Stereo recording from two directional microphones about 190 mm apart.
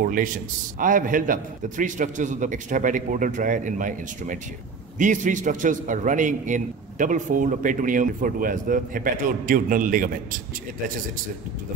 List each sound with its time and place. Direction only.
0.0 s a man's voice: 45° right (ahead or behind)